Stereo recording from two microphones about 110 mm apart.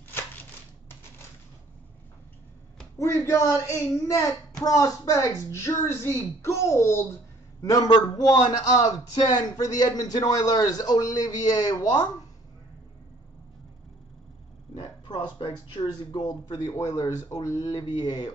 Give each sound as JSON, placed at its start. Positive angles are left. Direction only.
{"t": 3.0, "sound": "a woman's voice", "side_deg": 25}
{"t": 15.0, "sound": "a man's voice", "side_deg": 50}